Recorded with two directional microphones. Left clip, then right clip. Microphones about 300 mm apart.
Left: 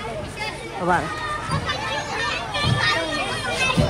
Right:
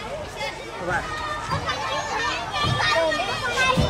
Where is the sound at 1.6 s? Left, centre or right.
Right.